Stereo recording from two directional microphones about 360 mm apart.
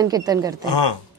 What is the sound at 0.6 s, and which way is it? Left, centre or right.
Speech, left.